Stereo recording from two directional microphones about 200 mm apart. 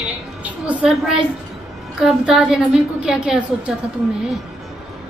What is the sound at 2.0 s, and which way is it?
A man's voice, 5° right (ahead or behind).